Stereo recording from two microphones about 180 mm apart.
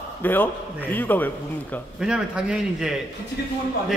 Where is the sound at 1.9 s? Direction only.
5° right (ahead or behind).